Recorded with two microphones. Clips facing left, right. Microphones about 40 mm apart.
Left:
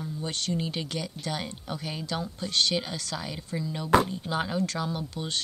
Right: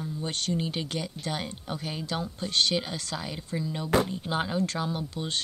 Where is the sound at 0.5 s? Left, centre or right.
Centre.